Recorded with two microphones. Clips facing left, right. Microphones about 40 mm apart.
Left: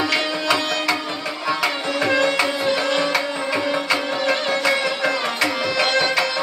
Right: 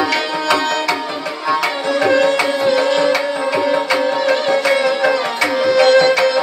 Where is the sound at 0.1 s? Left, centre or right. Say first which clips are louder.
Right 4 dB; centre.